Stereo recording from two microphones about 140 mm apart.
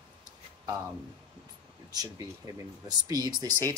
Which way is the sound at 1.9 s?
25° right (ahead or behind).